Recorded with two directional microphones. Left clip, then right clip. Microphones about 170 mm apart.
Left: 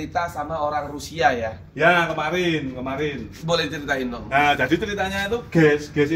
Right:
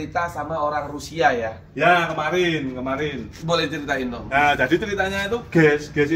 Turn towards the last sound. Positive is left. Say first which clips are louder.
# even
turn(degrees=15)  # may be behind; listen again after turning